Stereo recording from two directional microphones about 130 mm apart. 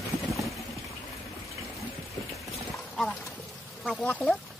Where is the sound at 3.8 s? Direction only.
10° left (ahead or behind).